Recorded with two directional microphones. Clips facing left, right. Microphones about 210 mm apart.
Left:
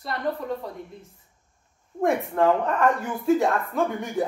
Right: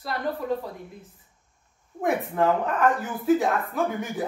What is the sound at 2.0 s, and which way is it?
A woman's voice, centre (ahead or behind).